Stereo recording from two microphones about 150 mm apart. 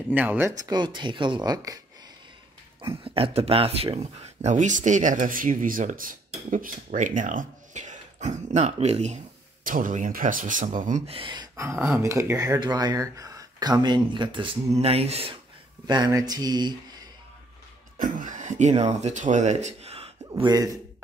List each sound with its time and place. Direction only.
0.1 s speech: 10° right (ahead or behind)
0.7 s speech: 30° right (ahead or behind)
3.0 s speech: 40° right (ahead or behind)
9.7 s speech: 65° right (ahead or behind)
11.1 s speech: 35° right (ahead or behind)
11.5 s speech: 20° right (ahead or behind)
14.7 s speech: 45° right (ahead or behind)
15.9 s speech: 25° right (ahead or behind)
17.9 s speech: 60° right (ahead or behind); by 20.5 s 40° right (ahead or behind)